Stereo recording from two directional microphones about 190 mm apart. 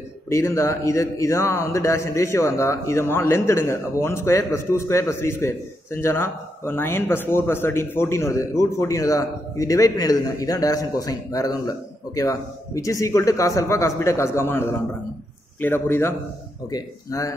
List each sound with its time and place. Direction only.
0.3 s a man's voice: 15° left (ahead or behind)
15.6 s a man's voice: 10° left (ahead or behind)